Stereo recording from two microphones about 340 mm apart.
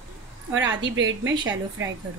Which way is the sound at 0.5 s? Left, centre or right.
Right.